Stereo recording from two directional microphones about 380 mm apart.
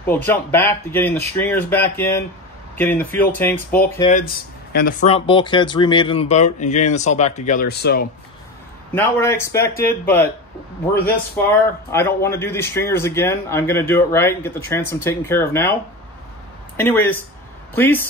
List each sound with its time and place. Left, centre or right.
0.0 s speech: centre
4.7 s a man's voice: centre
8.9 s a man's voice: centre
11.4 s a man's voice: centre
16.7 s speech: centre